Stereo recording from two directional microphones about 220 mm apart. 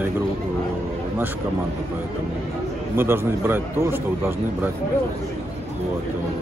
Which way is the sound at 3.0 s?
10° right (ahead or behind).